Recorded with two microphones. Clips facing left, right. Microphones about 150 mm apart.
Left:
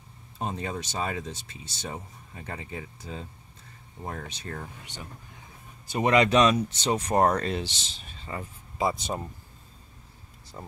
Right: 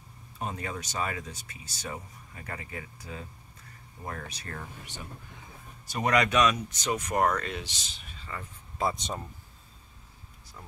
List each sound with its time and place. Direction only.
0.4 s speech: 30° left (ahead or behind)
5.9 s speech: 25° left (ahead or behind)
8.7 s speech: 5° left (ahead or behind)